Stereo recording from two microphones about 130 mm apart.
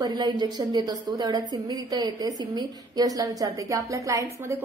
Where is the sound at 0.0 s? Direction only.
35° right (ahead or behind).